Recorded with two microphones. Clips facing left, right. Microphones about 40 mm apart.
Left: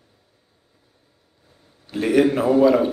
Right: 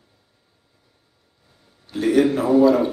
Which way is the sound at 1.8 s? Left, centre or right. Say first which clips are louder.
Even; left.